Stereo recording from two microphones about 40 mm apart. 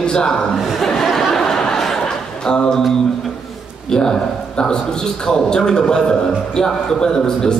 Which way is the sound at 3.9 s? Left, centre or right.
Centre.